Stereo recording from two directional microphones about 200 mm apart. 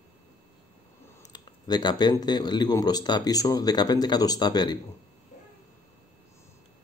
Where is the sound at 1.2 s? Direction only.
20° left (ahead or behind).